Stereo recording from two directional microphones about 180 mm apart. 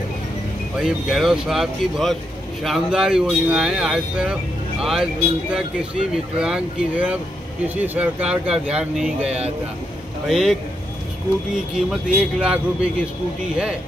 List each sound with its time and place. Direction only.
0.7 s speech: 5° right (ahead or behind)